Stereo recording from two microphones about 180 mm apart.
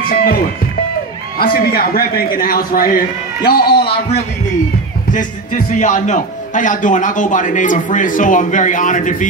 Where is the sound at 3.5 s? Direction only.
60° left (ahead or behind).